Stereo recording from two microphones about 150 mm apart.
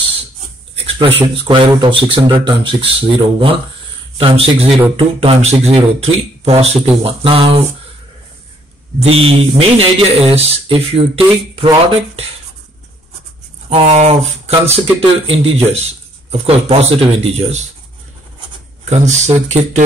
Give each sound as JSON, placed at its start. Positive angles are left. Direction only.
{"t": 0.8, "sound": "a sound", "side_deg": -35}
{"t": 1.3, "sound": "speech", "side_deg": -35}
{"t": 9.0, "sound": "speech", "side_deg": -40}
{"t": 13.7, "sound": "speech", "side_deg": -45}
{"t": 18.9, "sound": "speech", "side_deg": -50}